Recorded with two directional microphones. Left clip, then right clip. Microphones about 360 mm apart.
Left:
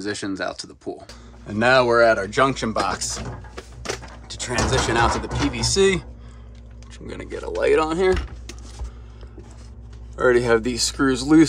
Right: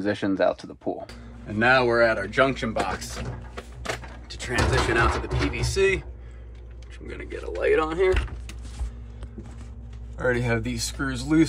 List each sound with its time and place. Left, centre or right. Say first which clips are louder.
0.0 s speech: right 4 dB; centre
1.5 s speech: left 3 dB; centre
7.1 s speech: left 4 dB; centre
10.4 s speech: left 8 dB; left